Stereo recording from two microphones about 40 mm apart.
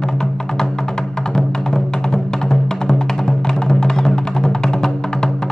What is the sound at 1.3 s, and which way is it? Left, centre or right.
Music, centre.